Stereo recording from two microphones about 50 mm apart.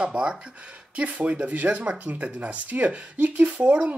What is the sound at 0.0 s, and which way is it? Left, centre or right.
Speech, centre.